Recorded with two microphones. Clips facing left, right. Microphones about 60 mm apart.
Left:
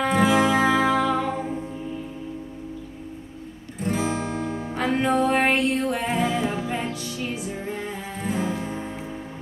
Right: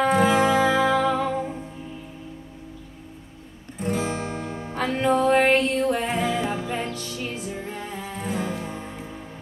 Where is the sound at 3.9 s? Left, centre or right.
Centre.